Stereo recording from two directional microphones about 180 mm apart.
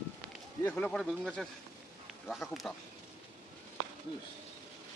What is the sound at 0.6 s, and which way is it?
Speech, 5° left (ahead or behind).